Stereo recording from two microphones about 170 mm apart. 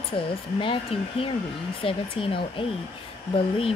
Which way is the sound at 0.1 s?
30° left (ahead or behind).